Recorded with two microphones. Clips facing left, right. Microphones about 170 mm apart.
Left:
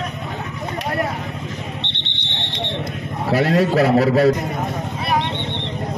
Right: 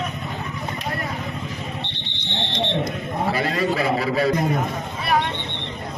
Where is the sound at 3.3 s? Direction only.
70° left (ahead or behind).